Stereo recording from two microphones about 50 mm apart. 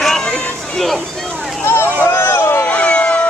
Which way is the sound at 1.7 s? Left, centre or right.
Left.